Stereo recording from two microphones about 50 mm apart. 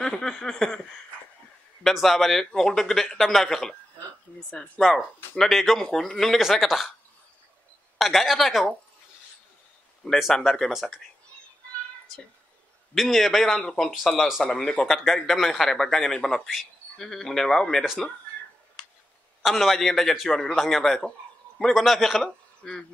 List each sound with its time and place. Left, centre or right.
0.0 s a man's voice: centre
1.8 s speech: centre
8.0 s speech: centre
10.0 s speech: centre
12.9 s speech: centre
14.2 s speech: centre
14.5 s a man's voice: centre
14.9 s a man's voice: centre
19.4 s a man's voice: centre
21.8 s speech: centre
22.6 s speech: centre